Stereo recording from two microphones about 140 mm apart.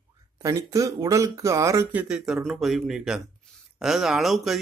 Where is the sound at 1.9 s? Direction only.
10° right (ahead or behind).